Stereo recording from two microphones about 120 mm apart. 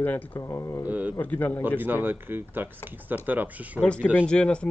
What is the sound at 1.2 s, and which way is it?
Speech, 15° left (ahead or behind).